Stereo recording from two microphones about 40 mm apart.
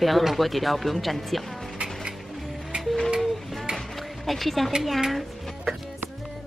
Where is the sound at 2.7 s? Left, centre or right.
Right.